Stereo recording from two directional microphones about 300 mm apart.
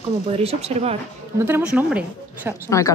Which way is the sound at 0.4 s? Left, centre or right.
Centre.